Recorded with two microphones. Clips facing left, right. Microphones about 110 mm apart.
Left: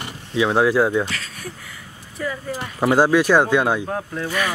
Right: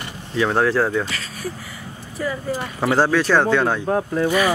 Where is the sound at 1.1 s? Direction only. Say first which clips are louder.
Right 3 dB; centre (ahead or behind).